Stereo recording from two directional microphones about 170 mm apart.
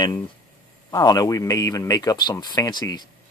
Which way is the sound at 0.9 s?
20° left (ahead or behind).